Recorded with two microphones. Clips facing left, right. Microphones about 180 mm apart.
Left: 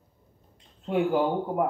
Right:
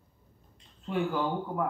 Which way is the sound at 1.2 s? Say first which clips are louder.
Left 6 dB; 25° left (ahead or behind).